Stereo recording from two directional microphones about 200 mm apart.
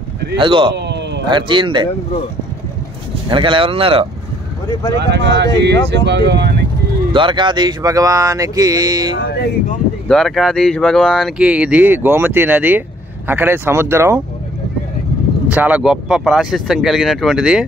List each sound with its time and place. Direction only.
0.4 s speech: 25° right (ahead or behind)
0.7 s a sound: 60° right (ahead or behind)
1.2 s speech: 25° right (ahead or behind)
3.3 s speech: 25° right (ahead or behind)
4.9 s speech: 60° right (ahead or behind)
7.1 s speech: 25° right (ahead or behind)
10.0 s speech: centre (ahead or behind)
15.5 s speech: 5° right (ahead or behind)